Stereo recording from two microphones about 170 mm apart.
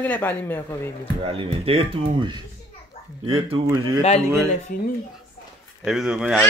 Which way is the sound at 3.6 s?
20° right (ahead or behind).